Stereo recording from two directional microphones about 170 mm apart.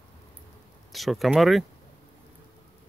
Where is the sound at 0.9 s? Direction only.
Centre (ahead or behind).